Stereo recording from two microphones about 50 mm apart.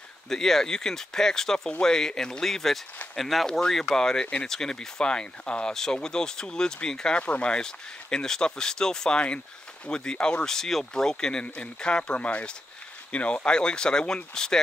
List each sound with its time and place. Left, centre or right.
0.3 s speech: centre
11.4 s speech: left